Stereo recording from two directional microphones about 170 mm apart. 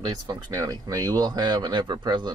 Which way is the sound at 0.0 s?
25° right (ahead or behind).